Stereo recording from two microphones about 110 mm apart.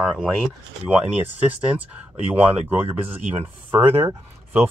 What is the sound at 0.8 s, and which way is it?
Speech, 15° right (ahead or behind).